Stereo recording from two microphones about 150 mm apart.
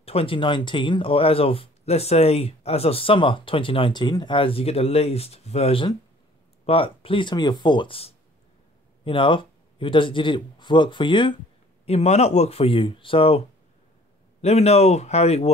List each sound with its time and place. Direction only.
0.0 s a man's voice: 40° left (ahead or behind)
11.8 s speech: 45° left (ahead or behind)
14.4 s speech: 45° left (ahead or behind)